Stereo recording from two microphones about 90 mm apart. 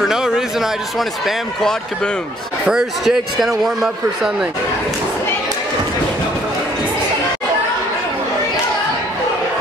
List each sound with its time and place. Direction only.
0.0 s a man's voice: 5° right (ahead or behind)